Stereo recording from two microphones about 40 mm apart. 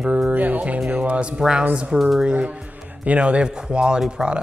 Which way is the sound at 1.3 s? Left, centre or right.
Centre.